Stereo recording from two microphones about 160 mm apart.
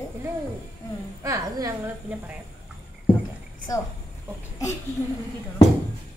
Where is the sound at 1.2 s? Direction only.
20° right (ahead or behind).